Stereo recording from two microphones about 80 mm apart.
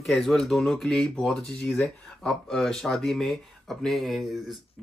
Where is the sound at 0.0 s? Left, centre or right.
Centre.